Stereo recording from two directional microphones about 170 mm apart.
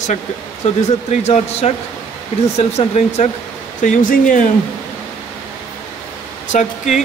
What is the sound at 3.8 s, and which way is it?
Speech, 50° left (ahead or behind).